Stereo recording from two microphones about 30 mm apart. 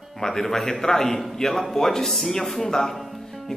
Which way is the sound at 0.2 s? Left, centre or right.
Centre.